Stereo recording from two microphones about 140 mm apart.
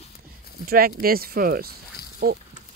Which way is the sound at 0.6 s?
90° right.